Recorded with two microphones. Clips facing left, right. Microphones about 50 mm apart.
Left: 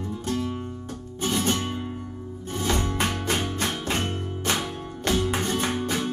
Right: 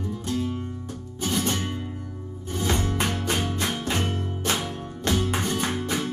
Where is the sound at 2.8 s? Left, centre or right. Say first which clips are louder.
Even; left.